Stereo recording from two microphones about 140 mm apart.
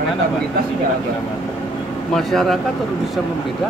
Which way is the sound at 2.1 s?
Centre (ahead or behind).